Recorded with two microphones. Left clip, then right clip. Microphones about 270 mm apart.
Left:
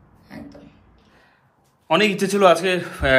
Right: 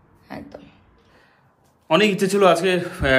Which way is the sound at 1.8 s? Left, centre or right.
Centre.